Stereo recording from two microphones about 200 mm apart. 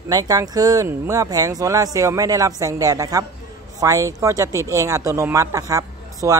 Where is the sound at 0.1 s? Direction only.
15° right (ahead or behind).